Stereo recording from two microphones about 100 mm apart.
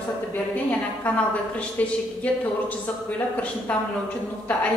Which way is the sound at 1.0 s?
15° left (ahead or behind).